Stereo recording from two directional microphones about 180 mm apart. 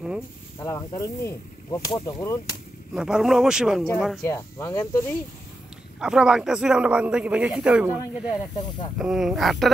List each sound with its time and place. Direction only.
0.6 s whip: 20° left (ahead or behind)
2.9 s a man's voice: 5° right (ahead or behind)
4.2 s speech: 15° left (ahead or behind)
5.9 s a man's voice: 5° right (ahead or behind)
8.3 s whip: 25° left (ahead or behind)
8.9 s a man's voice: 5° right (ahead or behind)